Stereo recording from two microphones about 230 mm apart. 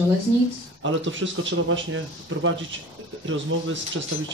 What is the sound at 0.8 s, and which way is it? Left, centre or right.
A man's voice, right.